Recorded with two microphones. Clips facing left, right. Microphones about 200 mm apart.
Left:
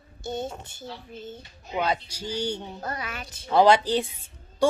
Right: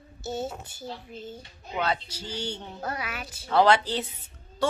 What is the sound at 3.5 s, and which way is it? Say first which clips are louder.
Speech: left 3 dB; 15° left (ahead or behind).